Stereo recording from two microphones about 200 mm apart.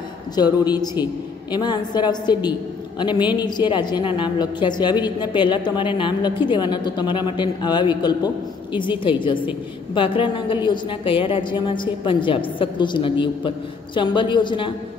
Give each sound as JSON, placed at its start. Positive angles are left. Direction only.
{"t": 0.4, "sound": "a woman's voice", "side_deg": 20}